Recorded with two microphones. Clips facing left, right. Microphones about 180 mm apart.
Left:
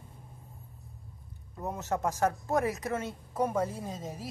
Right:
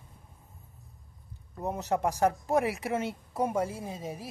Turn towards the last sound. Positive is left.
turn(degrees=-10)  # may be behind; listen again after turning